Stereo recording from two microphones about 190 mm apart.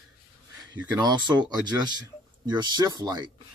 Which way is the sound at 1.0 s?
25° right (ahead or behind).